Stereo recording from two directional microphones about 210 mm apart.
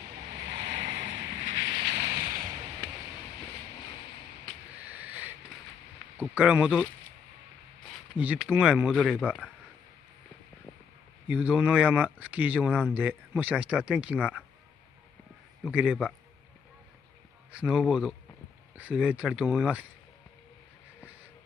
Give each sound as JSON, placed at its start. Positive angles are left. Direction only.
{"t": 0.4, "sound": "boat", "side_deg": -55}
{"t": 4.8, "sound": "a sound", "side_deg": -5}
{"t": 6.1, "sound": "speech", "side_deg": -5}
{"t": 8.2, "sound": "speech", "side_deg": -5}
{"t": 8.9, "sound": "speech", "side_deg": 5}
{"t": 11.2, "sound": "speech", "side_deg": -5}
{"t": 15.6, "sound": "speech", "side_deg": -5}
{"t": 17.5, "sound": "speech", "side_deg": -5}